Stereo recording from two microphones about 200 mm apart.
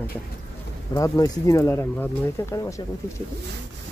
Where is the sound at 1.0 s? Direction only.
15° left (ahead or behind).